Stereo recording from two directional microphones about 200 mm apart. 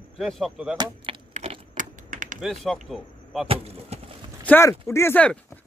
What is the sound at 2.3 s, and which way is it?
Speech, centre (ahead or behind).